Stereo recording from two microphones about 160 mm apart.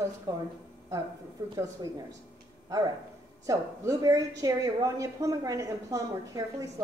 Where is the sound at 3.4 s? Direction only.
20° right (ahead or behind).